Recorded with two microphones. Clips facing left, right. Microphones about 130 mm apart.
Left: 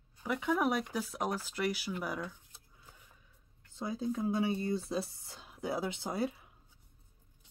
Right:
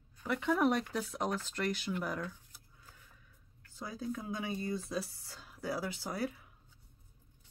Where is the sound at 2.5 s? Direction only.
20° left (ahead or behind).